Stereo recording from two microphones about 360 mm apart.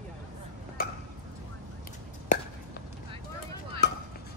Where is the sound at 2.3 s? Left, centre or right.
Left.